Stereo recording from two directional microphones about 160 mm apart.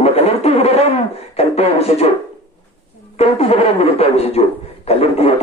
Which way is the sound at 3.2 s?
40° left (ahead or behind).